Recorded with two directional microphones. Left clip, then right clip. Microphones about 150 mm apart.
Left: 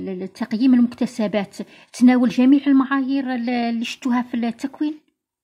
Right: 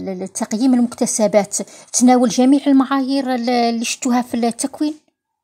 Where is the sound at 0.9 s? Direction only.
Centre (ahead or behind).